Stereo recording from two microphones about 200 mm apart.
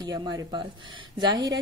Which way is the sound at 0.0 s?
20° right (ahead or behind).